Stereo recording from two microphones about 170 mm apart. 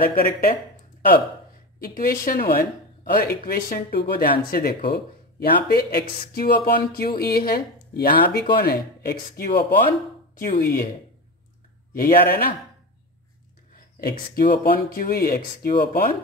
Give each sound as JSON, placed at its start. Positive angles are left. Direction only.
{"t": 0.0, "sound": "speech", "side_deg": 55}
{"t": 1.8, "sound": "speech", "side_deg": 60}
{"t": 3.0, "sound": "a sound", "side_deg": 55}
{"t": 3.4, "sound": "speech", "side_deg": 60}
{"t": 11.9, "sound": "speech", "side_deg": 60}
{"t": 13.7, "sound": "speech", "side_deg": 60}